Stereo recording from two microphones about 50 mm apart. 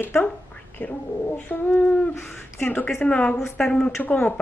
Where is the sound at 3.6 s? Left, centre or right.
Centre.